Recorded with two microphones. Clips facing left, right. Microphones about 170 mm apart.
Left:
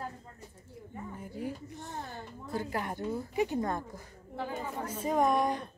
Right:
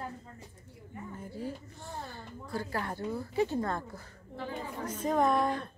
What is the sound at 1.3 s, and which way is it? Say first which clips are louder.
A woman's voice: left 2 dB; 15° left (ahead or behind).